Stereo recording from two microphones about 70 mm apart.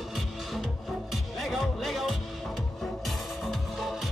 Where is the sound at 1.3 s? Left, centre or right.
Centre.